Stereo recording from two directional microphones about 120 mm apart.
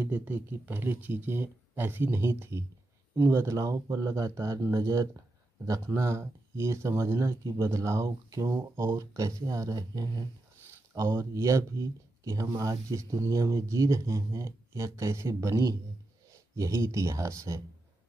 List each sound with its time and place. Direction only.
0.0 s speech: 15° right (ahead or behind)